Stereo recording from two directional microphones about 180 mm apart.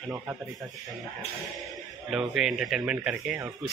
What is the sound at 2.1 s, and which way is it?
Speech, 5° right (ahead or behind).